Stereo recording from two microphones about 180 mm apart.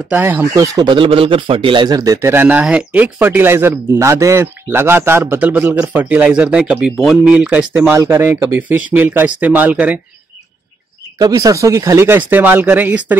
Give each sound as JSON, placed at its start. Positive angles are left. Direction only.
{"t": 0.1, "sound": "speech", "side_deg": -10}
{"t": 11.1, "sound": "speech", "side_deg": -20}